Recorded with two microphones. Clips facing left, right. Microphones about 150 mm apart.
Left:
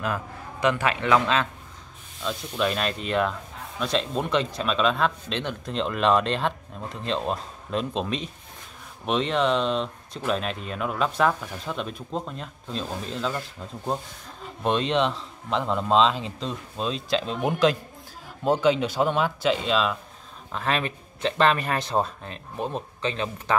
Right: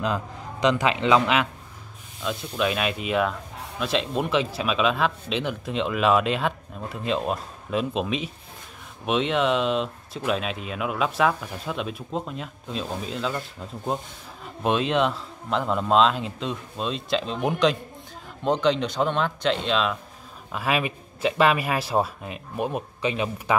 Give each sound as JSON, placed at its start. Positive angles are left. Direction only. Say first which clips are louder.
{"t": 0.0, "sound": "speech", "louder": "right 2 dB", "side_deg": -20}
{"t": 2.2, "sound": "speech", "louder": "right 1 dB", "side_deg": -5}